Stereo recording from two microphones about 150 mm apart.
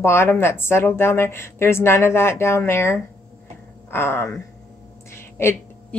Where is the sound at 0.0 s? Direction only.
15° left (ahead or behind).